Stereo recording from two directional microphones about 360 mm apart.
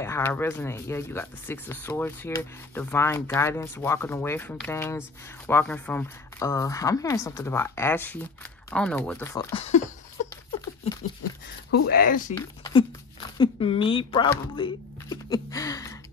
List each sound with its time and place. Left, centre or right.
0.0 s speech: centre
10.2 s a sound: centre
11.7 s speech: left
12.4 s speech: centre